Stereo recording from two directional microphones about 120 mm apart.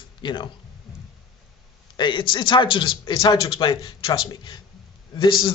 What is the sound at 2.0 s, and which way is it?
A man's voice, 40° left (ahead or behind).